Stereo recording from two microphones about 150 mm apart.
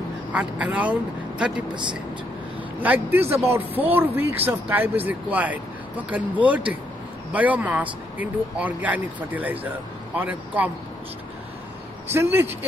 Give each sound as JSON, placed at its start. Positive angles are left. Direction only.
{"t": 0.3, "sound": "speech", "side_deg": -10}
{"t": 1.7, "sound": "speech", "side_deg": -30}
{"t": 2.8, "sound": "speech", "side_deg": -10}
{"t": 12.1, "sound": "speech", "side_deg": -15}